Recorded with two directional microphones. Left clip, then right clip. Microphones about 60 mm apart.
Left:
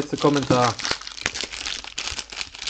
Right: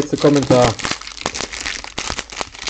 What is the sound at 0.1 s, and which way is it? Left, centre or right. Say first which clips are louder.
Speech: right 6 dB; right.